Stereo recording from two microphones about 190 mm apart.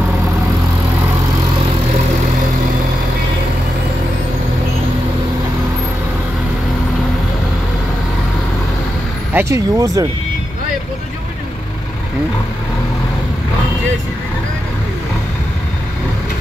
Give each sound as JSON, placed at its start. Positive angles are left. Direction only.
{"t": 9.3, "sound": "speech", "side_deg": -15}